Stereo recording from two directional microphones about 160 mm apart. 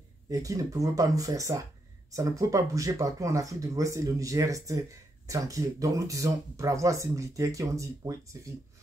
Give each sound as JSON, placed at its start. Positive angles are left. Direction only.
{"t": 0.3, "sound": "speech", "side_deg": -20}